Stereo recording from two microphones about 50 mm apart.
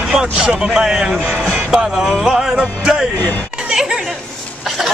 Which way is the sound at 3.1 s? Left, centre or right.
Left.